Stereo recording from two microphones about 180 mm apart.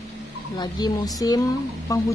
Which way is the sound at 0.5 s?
25° left (ahead or behind).